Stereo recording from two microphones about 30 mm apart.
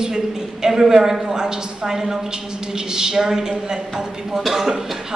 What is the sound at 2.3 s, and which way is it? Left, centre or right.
A woman's voice, right.